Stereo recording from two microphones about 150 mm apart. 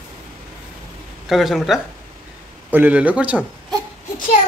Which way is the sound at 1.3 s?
Centre (ahead or behind).